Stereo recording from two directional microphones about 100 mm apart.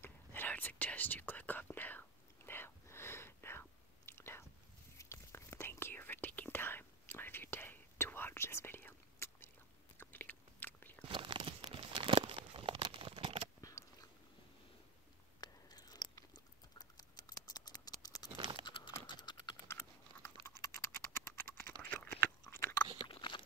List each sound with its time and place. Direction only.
0.0 s whispering: 20° left (ahead or behind)
9.9 s chewing: 20° left (ahead or behind)
11.1 s a sound: 50° right (ahead or behind)
11.7 s crumpling: 60° right (ahead or behind)
13.6 s a sound: 35° left (ahead or behind)
15.4 s chewing: 40° left (ahead or behind)
18.4 s computer keyboard: 50° right (ahead or behind)
18.7 s typing: 50° left (ahead or behind)
19.7 s chewing: 25° left (ahead or behind)
20.4 s typing: 30° left (ahead or behind)
22.4 s biting: 25° left (ahead or behind)
23.0 s biting: 55° left (ahead or behind)